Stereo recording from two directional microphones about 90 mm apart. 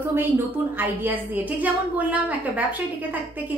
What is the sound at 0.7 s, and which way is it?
A woman's voice, 20° right (ahead or behind).